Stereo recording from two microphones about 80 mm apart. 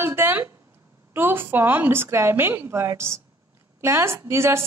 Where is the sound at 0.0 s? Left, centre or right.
Right.